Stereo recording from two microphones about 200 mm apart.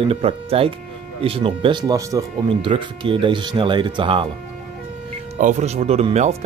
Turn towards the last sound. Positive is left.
turn(degrees=-35)  # may be behind; listen again after turning